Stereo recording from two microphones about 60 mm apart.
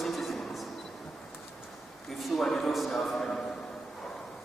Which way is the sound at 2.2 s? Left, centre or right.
Centre.